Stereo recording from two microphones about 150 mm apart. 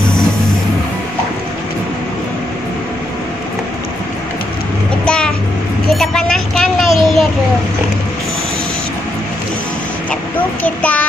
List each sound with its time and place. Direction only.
5.0 s vehicle: 5° left (ahead or behind)
5.9 s a sound: 5° left (ahead or behind)
10.6 s child singing: 10° left (ahead or behind)